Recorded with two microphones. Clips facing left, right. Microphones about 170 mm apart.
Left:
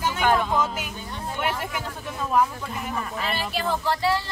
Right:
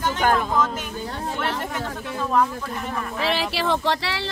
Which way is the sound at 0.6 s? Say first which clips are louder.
Right 3 dB; 10° left (ahead or behind).